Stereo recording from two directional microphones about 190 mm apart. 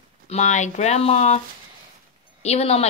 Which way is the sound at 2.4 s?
35° left (ahead or behind).